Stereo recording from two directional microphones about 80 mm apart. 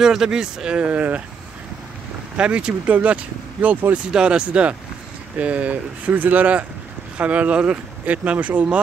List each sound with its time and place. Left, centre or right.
0.0 s speech: centre
2.3 s speech: centre